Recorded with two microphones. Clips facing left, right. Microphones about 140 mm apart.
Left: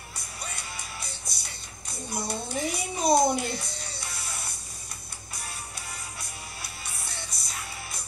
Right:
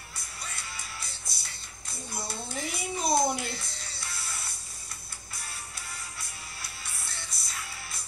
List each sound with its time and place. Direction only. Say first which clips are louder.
0.5 s music: left 1 dB; 20° left (ahead or behind)
6.6 s music: left 3 dB; 20° left (ahead or behind)